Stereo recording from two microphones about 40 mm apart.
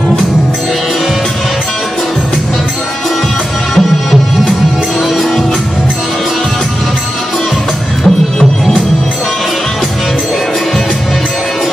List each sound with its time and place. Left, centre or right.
3.7 s music: centre
8.0 s music: centre